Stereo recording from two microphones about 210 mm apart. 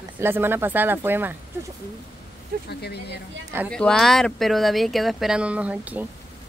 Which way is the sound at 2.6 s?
50° left (ahead or behind).